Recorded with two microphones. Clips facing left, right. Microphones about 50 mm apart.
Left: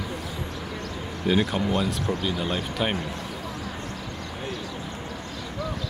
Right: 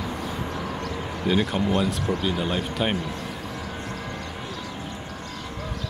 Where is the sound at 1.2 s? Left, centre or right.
Centre.